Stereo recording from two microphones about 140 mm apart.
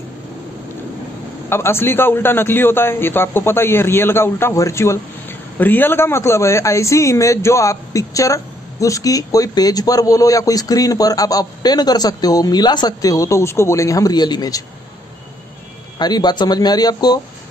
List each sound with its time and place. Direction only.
1.5 s a man's voice: 15° left (ahead or behind)
16.0 s speech: 30° left (ahead or behind)